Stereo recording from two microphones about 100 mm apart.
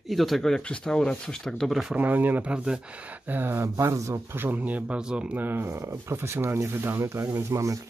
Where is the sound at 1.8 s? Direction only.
10° right (ahead or behind).